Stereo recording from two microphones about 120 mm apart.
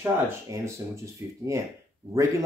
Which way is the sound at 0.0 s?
25° right (ahead or behind).